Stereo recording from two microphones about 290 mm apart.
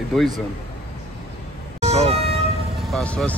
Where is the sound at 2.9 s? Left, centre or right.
Centre.